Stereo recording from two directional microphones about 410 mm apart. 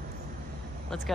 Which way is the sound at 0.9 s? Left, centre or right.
Centre.